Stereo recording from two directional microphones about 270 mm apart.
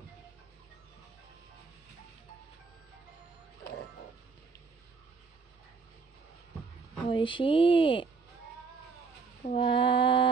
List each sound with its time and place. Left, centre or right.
7.1 s speech: centre
9.4 s speech: centre